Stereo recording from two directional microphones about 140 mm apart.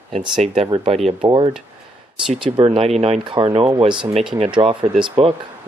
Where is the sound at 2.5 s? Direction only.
40° right (ahead or behind).